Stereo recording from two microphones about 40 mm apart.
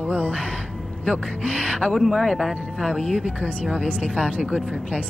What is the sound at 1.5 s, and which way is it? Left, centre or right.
Speech, left.